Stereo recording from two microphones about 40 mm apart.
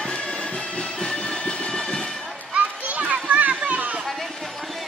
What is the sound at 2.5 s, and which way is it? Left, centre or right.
Children playing, right.